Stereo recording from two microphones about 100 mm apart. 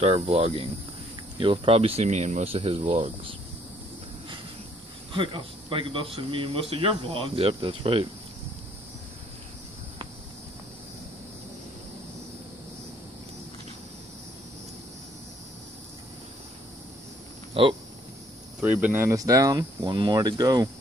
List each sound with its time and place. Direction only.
0.0 s speech: 85° right
1.4 s speech: 60° right (ahead or behind); by 3.3 s 75° right (ahead or behind)
5.1 s speech: 55° right (ahead or behind)
17.6 s speech: 65° right (ahead or behind)
18.6 s speech: 15° right (ahead or behind)
19.0 s speech: 35° right (ahead or behind)